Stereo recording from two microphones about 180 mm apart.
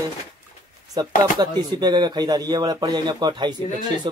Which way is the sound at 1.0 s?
25° right (ahead or behind).